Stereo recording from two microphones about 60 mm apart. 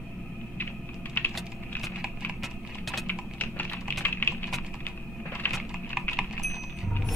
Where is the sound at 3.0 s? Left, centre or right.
Left.